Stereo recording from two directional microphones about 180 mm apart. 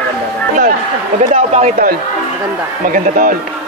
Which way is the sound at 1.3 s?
40° right (ahead or behind).